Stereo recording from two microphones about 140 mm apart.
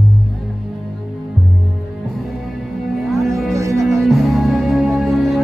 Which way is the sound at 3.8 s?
Centre (ahead or behind).